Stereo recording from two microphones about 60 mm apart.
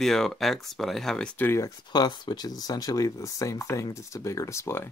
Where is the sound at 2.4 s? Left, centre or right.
Left.